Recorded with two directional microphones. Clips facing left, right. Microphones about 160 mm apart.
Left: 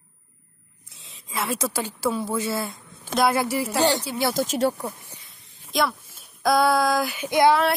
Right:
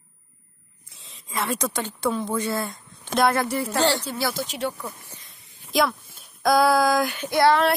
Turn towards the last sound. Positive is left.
turn(degrees=15)  # may be behind; listen again after turning